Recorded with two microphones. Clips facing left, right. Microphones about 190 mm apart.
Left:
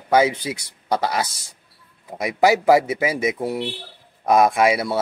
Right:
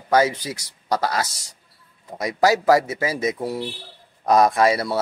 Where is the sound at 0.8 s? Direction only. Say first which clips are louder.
Left 1 dB; 25° left (ahead or behind); by 5.0 s 5° left (ahead or behind).